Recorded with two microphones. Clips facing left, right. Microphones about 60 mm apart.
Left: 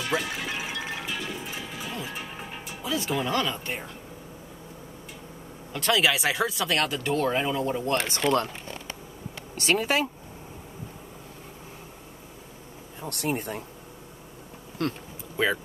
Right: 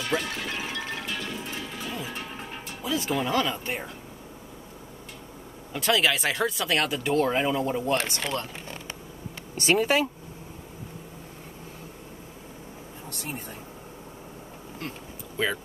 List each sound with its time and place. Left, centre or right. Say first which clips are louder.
0.0 s music: even; centre
5.7 s speech: even; centre
8.0 s speech: left 3 dB; left
9.7 s speech: right 2 dB; centre
13.0 s speech: left 8 dB; left
14.8 s speech: left 9 dB; left
15.3 s speech: left 2 dB; centre